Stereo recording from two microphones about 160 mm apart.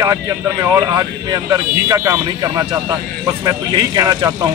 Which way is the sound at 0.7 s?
20° right (ahead or behind).